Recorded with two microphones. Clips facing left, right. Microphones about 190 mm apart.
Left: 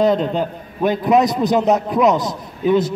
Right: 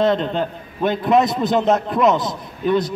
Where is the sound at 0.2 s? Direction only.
5° left (ahead or behind).